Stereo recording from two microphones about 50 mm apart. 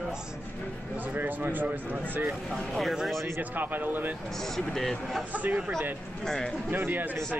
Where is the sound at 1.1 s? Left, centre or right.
Right.